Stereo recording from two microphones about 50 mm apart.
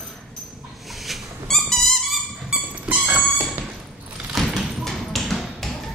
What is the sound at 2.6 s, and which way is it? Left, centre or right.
Music, right.